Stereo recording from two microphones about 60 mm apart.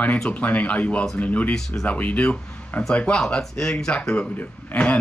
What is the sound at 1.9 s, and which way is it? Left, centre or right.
Speech, left.